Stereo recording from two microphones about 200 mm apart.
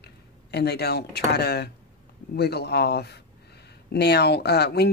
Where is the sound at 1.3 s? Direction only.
55° left (ahead or behind).